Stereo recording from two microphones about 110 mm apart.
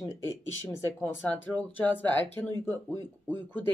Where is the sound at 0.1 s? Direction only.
30° left (ahead or behind).